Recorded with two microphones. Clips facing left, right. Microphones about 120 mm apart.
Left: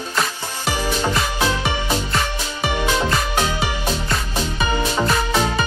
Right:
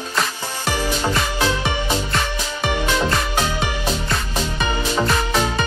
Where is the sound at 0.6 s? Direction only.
15° left (ahead or behind).